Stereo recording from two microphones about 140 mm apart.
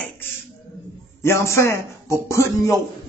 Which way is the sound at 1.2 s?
20° left (ahead or behind).